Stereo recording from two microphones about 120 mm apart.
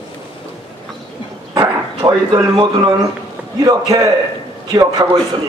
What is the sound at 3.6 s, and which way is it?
A man's voice, 30° right (ahead or behind).